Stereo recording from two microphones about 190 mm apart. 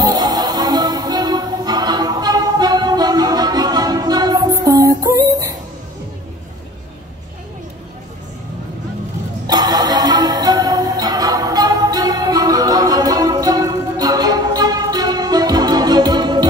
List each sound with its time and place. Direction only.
0.0 s music: 20° right (ahead or behind)
9.5 s music: 20° right (ahead or behind)